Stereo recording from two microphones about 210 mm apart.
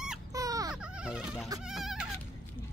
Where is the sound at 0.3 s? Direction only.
15° right (ahead or behind).